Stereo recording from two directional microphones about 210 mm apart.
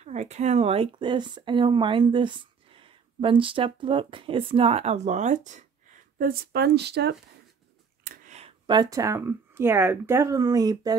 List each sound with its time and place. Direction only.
0.0 s speech: 30° right (ahead or behind)
6.1 s speech: 45° right (ahead or behind)
8.0 s a sound: 40° right (ahead or behind)
8.4 s speech: 25° right (ahead or behind)